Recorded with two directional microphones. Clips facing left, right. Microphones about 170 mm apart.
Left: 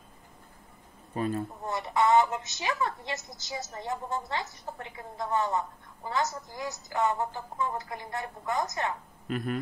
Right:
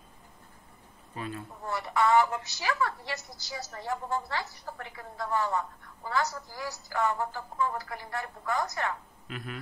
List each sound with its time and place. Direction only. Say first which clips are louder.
1.1 s speech: left 8 dB; 45° left (ahead or behind)
1.6 s a woman's voice: right 1 dB; 20° left (ahead or behind)
9.3 s a sound: left 9 dB; 45° left (ahead or behind)